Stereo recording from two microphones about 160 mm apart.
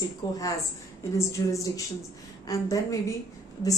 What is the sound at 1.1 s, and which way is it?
A woman's voice, 20° left (ahead or behind).